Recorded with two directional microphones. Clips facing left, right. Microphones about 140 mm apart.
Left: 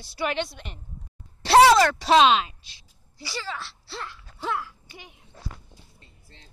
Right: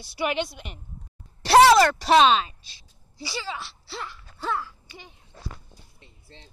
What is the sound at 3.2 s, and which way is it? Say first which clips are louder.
Speech: right 1 dB; 15° right (ahead or behind).